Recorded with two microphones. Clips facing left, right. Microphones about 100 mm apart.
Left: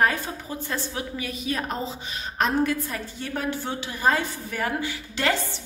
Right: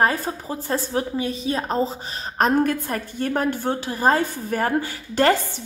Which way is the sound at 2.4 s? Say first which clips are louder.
Right 4 dB; 45° right (ahead or behind).